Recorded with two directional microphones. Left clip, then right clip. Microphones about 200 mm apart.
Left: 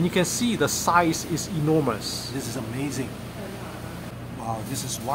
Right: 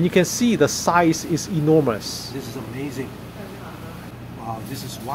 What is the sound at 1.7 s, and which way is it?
Speech, 15° right (ahead or behind).